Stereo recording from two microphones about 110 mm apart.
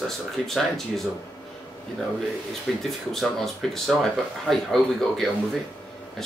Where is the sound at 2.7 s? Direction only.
Centre (ahead or behind).